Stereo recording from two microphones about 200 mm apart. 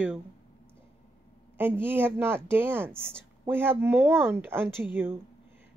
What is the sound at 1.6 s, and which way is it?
A woman's voice, 10° right (ahead or behind).